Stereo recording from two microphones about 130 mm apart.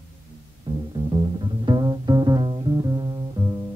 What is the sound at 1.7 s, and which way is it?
Music, 35° right (ahead or behind).